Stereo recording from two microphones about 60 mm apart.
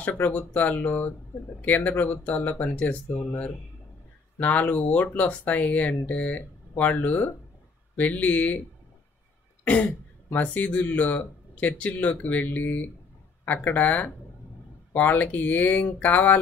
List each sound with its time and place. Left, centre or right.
0.0 s speech: left
10.3 s speech: left